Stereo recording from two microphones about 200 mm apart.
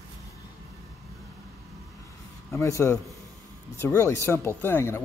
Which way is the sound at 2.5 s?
15° left (ahead or behind).